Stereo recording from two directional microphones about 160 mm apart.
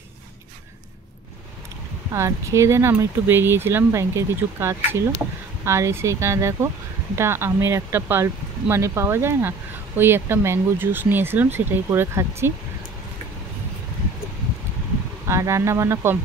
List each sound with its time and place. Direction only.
2.1 s speech: 20° right (ahead or behind)
15.2 s speech: 20° right (ahead or behind)